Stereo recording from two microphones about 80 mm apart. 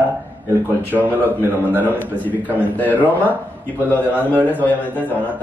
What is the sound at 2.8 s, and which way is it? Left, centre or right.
Speech, centre.